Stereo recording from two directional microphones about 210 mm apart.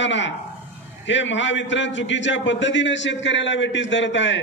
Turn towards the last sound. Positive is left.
turn(degrees=60)  # may be behind; listen again after turning